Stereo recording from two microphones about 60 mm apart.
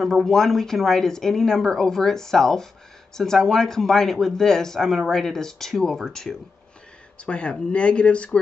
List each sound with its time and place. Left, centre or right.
0.0 s speech: centre